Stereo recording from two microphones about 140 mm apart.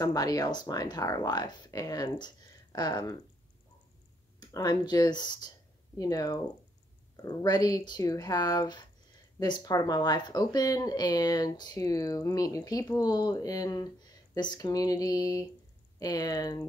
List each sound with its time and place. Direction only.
0.0 s speech: 25° left (ahead or behind)
4.4 s speech: 30° left (ahead or behind)